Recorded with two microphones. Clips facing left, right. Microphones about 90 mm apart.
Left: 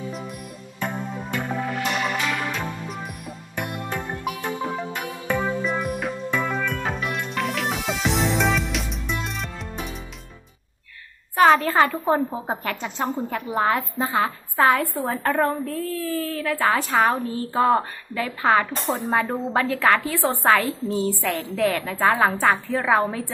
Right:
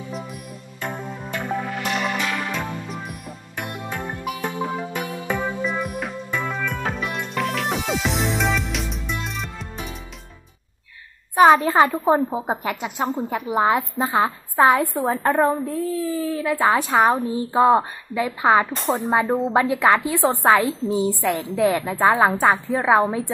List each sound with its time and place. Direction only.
0.1 s music: centre (ahead or behind)
11.3 s a woman's voice: 20° right (ahead or behind)
11.9 s a woman's voice: 5° right (ahead or behind); by 23.3 s 20° right (ahead or behind)